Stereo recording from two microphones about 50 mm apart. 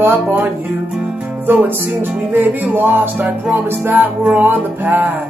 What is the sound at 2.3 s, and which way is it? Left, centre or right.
Music, right.